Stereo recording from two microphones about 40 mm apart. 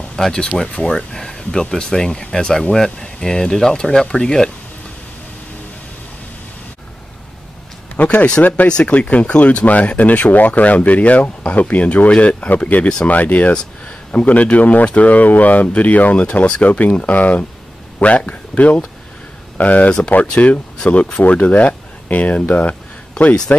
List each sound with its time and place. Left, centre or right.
0.1 s speech: centre
7.9 s speech: left
22.6 s a sound: left